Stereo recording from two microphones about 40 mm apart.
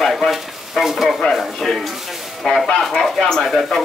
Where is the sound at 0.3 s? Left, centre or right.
Centre.